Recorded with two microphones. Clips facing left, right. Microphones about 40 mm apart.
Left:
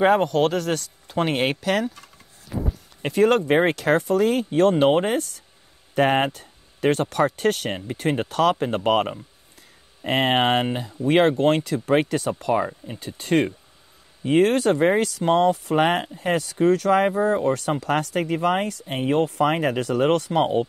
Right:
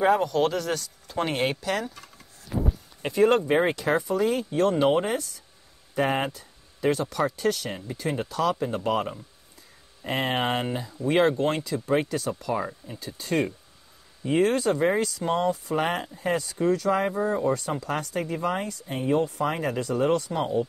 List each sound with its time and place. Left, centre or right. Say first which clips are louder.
0.0 s speech: left 4 dB; left
3.1 s speech: left 2 dB; left